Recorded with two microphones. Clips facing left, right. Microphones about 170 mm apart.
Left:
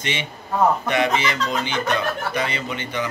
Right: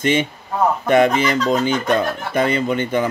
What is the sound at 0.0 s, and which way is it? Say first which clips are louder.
Speech: right 10 dB; 50° right (ahead or behind).